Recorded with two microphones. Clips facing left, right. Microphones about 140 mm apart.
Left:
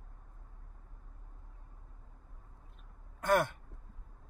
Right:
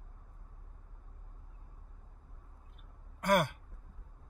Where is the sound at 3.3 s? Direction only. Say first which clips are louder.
Even; 15° right (ahead or behind).